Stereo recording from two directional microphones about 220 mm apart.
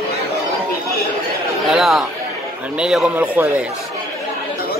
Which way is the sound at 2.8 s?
5° right (ahead or behind).